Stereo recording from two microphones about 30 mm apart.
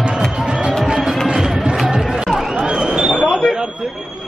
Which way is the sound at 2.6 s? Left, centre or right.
Right.